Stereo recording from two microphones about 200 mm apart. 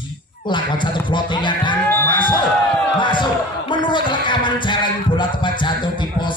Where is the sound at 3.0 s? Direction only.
25° left (ahead or behind).